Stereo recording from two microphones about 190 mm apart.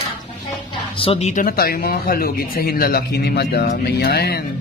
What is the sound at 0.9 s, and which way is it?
Speech, 30° left (ahead or behind).